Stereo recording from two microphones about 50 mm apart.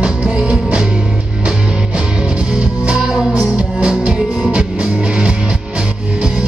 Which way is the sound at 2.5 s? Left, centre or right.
Centre.